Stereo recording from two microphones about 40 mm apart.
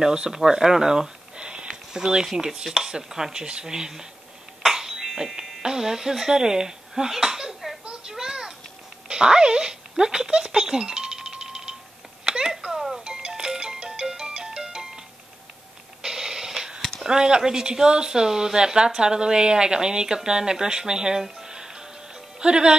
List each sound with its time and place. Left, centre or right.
0.0 s speech: right
0.3 s speech: centre
1.7 s chopping: centre
2.9 s speech: centre
4.6 s music: centre
5.6 s speech: centre
8.1 s a sound: centre
9.1 s speech: centre
12.3 s a sound: centre
13.0 s music: right
16.0 s a sound: centre
17.0 s speech: centre